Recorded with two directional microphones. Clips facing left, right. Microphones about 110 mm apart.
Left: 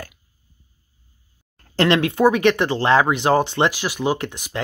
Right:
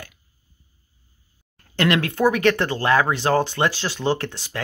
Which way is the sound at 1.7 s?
30° left (ahead or behind).